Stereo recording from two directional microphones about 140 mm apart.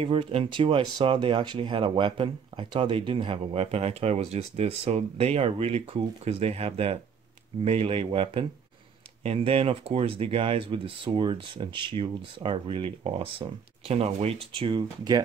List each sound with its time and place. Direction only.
0.0 s speech: 40° right (ahead or behind)